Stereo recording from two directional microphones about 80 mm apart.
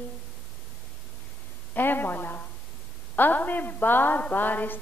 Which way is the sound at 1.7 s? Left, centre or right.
Left.